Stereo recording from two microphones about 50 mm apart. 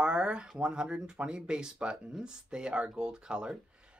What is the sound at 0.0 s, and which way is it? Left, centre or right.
Speech, centre.